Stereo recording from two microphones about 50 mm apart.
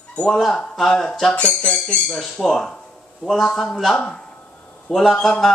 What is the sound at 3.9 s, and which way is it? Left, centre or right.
Speech, centre.